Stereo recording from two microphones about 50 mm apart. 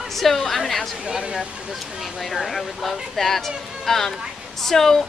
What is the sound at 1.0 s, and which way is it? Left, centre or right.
Speech, centre.